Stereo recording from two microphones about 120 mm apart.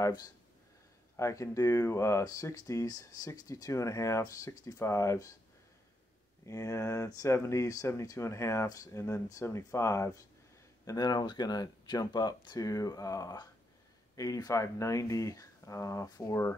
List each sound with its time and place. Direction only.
0.0 s speech: 30° left (ahead or behind)
6.4 s speech: 25° left (ahead or behind)